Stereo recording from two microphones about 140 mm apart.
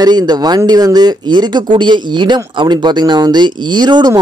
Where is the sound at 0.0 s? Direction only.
30° right (ahead or behind).